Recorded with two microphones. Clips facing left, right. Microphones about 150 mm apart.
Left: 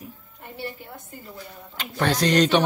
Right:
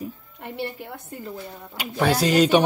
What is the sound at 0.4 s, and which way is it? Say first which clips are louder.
Speech: right 4 dB; 70° right (ahead or behind).